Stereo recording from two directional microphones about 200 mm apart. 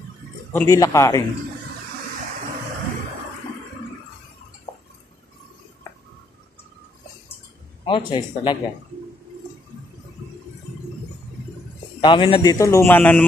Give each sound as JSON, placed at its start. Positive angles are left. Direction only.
{"t": 0.5, "sound": "a man's voice", "side_deg": 15}
{"t": 7.8, "sound": "speech", "side_deg": 25}
{"t": 12.0, "sound": "a man's voice", "side_deg": 25}